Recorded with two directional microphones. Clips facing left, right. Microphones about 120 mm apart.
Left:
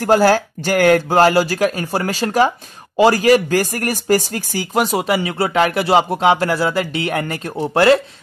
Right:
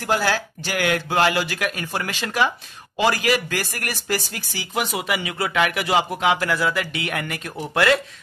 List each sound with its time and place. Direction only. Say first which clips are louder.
0.0 s speech: left 9 dB; 45° left (ahead or behind)